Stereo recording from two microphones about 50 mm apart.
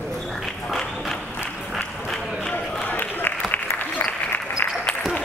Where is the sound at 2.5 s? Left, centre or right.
Left.